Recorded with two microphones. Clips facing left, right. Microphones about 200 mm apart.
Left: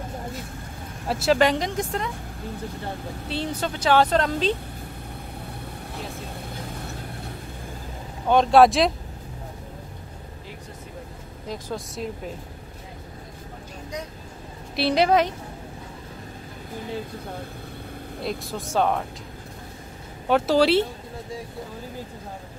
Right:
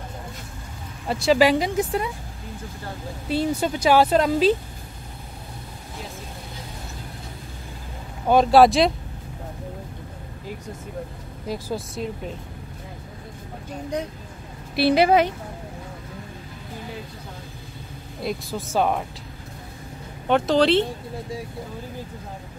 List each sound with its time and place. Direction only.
1.0 s speech: centre (ahead or behind)
3.3 s speech: 10° right (ahead or behind)
8.3 s speech: 5° right (ahead or behind)
11.4 s speech: 5° right (ahead or behind)
14.8 s speech: 5° right (ahead or behind)
18.2 s speech: centre (ahead or behind)
20.2 s speech: 5° left (ahead or behind)